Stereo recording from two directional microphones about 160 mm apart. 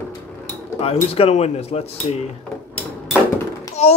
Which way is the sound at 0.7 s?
40° left (ahead or behind).